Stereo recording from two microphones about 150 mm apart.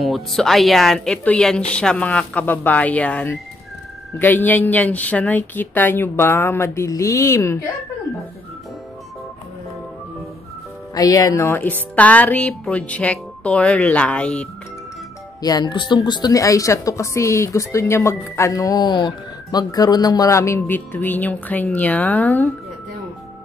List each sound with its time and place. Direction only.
0.0 s speech: centre (ahead or behind); by 7.5 s 20° left (ahead or behind)
11.0 s speech: 25° left (ahead or behind); by 14.5 s 10° left (ahead or behind)
15.4 s a woman's voice: 25° left (ahead or behind); by 22.5 s 10° left (ahead or behind)